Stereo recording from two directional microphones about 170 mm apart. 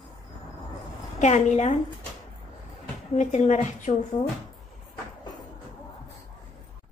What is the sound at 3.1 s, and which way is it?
Speech, 45° left (ahead or behind).